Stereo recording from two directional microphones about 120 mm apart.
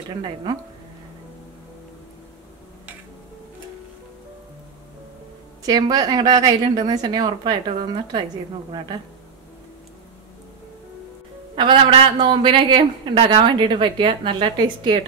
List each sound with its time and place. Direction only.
0.2 s a woman's voice: 40° right (ahead or behind)
5.7 s a woman's voice: 30° right (ahead or behind)
11.5 s a woman's voice: 45° right (ahead or behind)